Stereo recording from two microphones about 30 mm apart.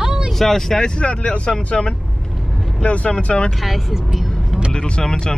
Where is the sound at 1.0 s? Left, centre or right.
Left.